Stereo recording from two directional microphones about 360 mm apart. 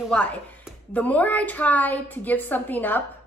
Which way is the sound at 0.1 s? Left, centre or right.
Centre.